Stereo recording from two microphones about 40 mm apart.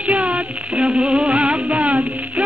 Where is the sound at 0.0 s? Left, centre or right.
Right.